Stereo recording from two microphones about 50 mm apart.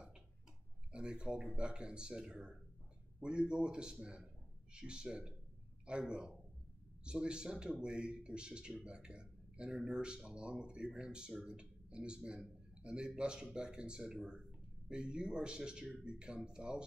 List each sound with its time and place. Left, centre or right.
0.9 s a man's voice: centre